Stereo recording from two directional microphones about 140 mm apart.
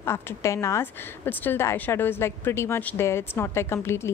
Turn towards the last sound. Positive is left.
turn(degrees=20)  # may be behind; listen again after turning